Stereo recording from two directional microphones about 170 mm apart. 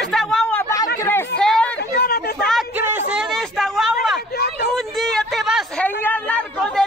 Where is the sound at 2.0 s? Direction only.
70° left (ahead or behind).